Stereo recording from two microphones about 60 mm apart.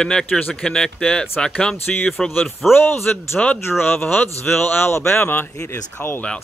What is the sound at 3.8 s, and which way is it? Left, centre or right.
Speech, left.